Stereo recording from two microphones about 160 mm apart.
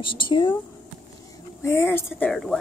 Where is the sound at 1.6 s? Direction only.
15° left (ahead or behind).